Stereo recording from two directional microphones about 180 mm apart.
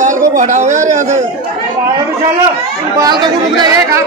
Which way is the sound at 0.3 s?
45° right (ahead or behind).